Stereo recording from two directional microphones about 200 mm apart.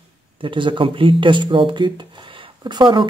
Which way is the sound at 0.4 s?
25° right (ahead or behind).